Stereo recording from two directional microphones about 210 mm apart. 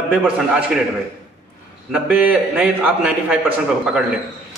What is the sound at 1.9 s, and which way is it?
A man's voice, 5° right (ahead or behind).